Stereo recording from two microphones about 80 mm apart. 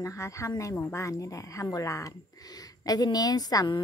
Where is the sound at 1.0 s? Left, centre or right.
Left.